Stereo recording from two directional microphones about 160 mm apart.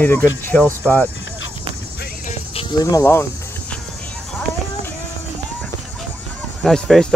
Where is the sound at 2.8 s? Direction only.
20° left (ahead or behind).